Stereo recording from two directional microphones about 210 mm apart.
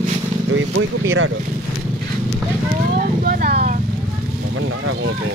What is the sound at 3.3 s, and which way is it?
Vehicle, 50° right (ahead or behind).